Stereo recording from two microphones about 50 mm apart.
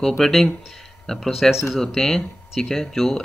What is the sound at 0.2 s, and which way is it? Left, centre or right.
Speech, centre.